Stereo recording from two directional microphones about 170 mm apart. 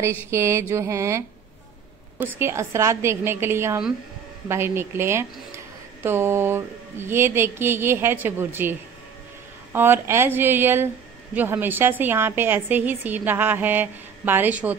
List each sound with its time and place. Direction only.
0.3 s a woman's voice: 15° right (ahead or behind)